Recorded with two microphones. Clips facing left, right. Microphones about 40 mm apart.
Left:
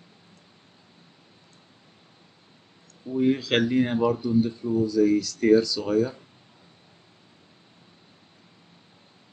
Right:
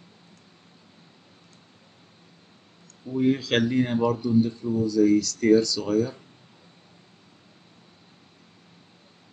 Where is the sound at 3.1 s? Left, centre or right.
Centre.